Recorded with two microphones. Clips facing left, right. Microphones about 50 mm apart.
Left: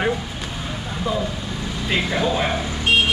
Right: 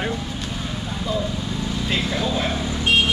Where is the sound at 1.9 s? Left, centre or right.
Centre.